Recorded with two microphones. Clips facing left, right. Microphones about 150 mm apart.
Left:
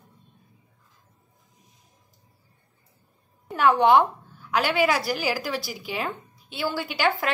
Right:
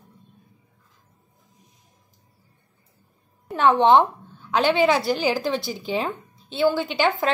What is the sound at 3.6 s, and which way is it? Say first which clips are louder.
A woman's voice: right 2 dB; 20° right (ahead or behind).